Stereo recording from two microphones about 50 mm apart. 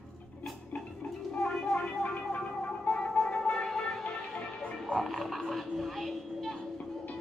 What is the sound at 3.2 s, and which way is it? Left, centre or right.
Music, centre.